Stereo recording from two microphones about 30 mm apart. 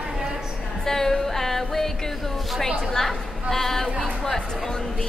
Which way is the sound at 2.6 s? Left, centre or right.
Centre.